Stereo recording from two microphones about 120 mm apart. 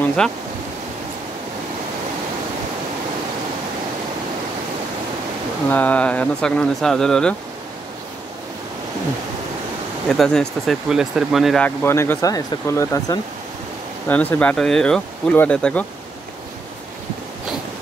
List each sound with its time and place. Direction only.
0.0 s a sound: 10° left (ahead or behind)
5.7 s speech: 15° left (ahead or behind)
10.0 s speech: 5° left (ahead or behind)
11.6 s speech: 20° left (ahead or behind)
14.0 s speech: 15° left (ahead or behind)